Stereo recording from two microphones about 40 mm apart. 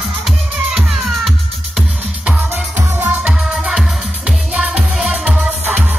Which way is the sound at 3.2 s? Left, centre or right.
Right.